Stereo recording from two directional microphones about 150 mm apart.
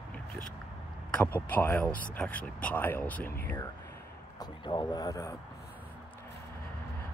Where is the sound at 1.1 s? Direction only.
10° left (ahead or behind).